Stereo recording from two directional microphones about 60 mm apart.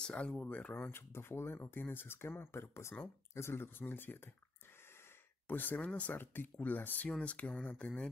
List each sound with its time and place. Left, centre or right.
0.0 s speech: centre
0.9 s speech: left
5.5 s speech: left
7.1 s speech: left